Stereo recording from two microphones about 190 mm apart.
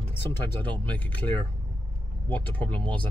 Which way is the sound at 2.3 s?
10° left (ahead or behind).